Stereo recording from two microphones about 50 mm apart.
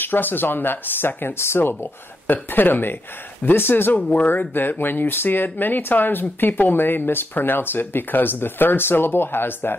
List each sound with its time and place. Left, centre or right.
0.0 s speech: left